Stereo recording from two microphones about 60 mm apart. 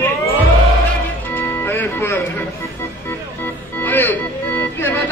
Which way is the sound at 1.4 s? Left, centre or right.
Left.